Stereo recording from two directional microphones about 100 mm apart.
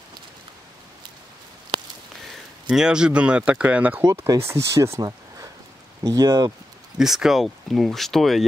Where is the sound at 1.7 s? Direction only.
55° right (ahead or behind).